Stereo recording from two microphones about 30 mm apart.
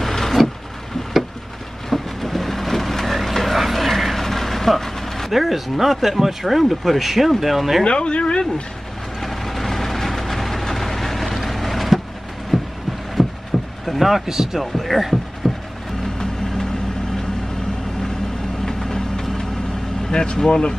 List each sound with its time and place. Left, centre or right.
0.0 s vehicle: centre
1.9 s vehicle: centre
5.3 s speech: centre
7.8 s speech: left
9.2 s vehicle: centre
12.5 s heart sounds: centre
13.2 s a sound: centre
13.8 s speech: centre
14.2 s speech: centre
14.6 s speech: centre
18.7 s vehicle: centre
20.1 s speech: left